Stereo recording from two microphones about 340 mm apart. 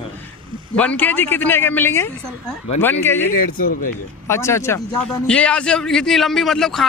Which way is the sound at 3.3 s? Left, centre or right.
Left.